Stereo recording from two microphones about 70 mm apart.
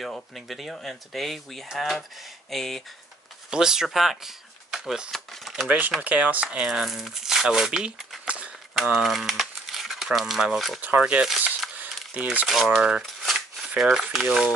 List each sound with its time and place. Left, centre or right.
0.0 s speech: centre
3.4 s speech: centre
5.1 s speech: centre
5.7 s speech: centre
8.3 s a sound: centre
8.7 s speech: centre
11.0 s speech: centre
11.7 s a sound: right
12.4 s speech: centre
13.0 s a sound: centre